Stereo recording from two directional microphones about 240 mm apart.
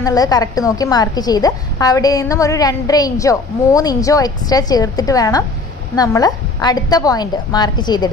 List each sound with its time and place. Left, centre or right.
0.0 s a woman's voice: centre